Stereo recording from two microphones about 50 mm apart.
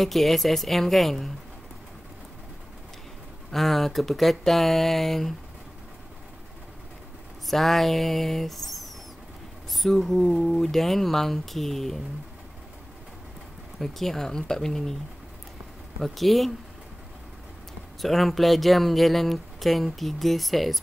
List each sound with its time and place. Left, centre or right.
0.0 s speech: centre
3.5 s speech: centre
7.4 s speech: centre
13.7 s speech: centre
16.0 s speech: centre
18.0 s speech: centre